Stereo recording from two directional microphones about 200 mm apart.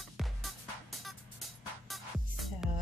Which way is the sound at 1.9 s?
Centre (ahead or behind).